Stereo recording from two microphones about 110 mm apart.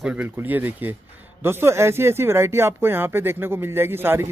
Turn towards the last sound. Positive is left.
turn(degrees=-20)  # may be behind; listen again after turning